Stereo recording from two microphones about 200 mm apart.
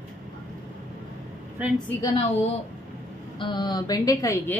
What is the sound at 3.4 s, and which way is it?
A woman's voice, 25° left (ahead or behind).